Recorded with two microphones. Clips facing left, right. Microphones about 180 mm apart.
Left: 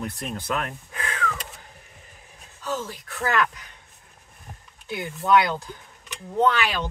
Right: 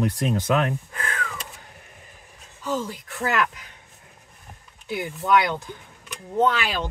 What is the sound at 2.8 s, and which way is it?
Speech, 20° right (ahead or behind).